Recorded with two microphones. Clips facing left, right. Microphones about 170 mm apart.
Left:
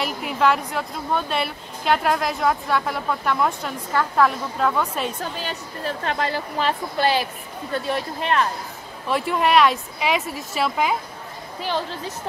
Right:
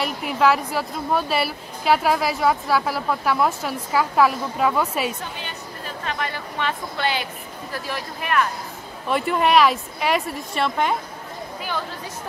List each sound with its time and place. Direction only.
0.0 s a woman's voice: centre (ahead or behind)
5.9 s a woman's voice: 35° left (ahead or behind)
9.0 s a woman's voice: centre (ahead or behind)